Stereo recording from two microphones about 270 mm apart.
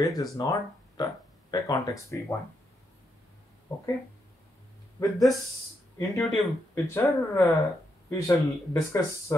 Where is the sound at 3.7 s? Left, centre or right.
Centre.